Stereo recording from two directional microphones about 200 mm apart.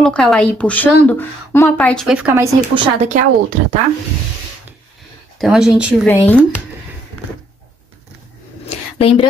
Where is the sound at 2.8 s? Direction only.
35° right (ahead or behind).